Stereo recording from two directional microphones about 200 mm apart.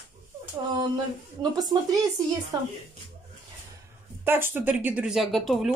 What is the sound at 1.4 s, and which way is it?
Speech, 20° right (ahead or behind).